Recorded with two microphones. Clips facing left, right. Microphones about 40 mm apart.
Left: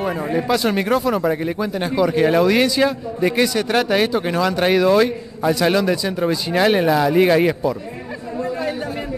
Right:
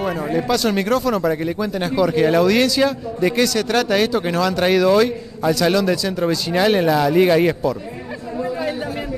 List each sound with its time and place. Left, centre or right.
0.0 s a man's voice: centre
0.5 s speech: left
8.4 s chatter: centre